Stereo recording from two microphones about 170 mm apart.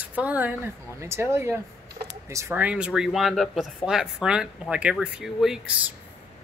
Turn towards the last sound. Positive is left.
turn(degrees=0)  # may be behind; listen again after turning